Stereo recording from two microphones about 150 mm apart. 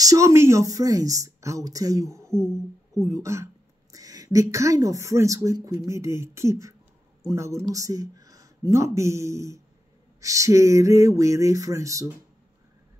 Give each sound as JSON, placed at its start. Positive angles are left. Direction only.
{"t": 0.0, "sound": "speech", "side_deg": -20}
{"t": 2.3, "sound": "a sound", "side_deg": 5}
{"t": 2.9, "sound": "speech", "side_deg": -20}